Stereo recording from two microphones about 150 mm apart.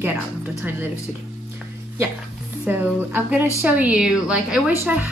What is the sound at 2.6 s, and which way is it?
A woman's voice, 15° right (ahead or behind).